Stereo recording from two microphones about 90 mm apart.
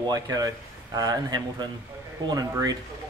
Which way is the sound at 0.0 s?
45° right (ahead or behind).